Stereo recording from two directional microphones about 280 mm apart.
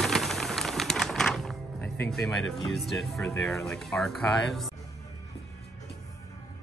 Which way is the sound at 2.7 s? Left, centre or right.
Centre.